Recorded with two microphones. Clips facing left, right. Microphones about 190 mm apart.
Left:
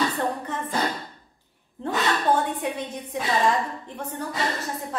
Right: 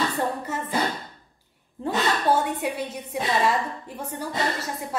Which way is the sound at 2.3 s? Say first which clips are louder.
Even; 5° right (ahead or behind).